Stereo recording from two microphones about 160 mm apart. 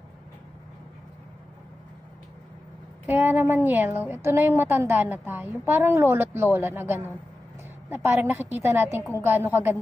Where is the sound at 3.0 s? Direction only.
10° right (ahead or behind).